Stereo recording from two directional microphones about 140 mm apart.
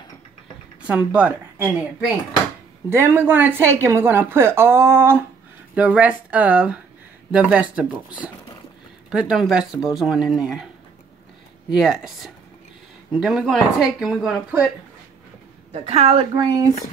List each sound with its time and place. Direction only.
0.8 s a woman's voice: 10° right (ahead or behind)
11.7 s speech: 5° right (ahead or behind)
15.7 s a woman's voice: 45° right (ahead or behind)
16.3 s speech: 30° right (ahead or behind)